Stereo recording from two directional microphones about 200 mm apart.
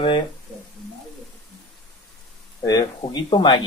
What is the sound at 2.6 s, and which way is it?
Speech, 20° left (ahead or behind).